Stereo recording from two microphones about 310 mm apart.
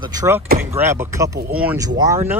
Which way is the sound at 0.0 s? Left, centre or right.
Centre.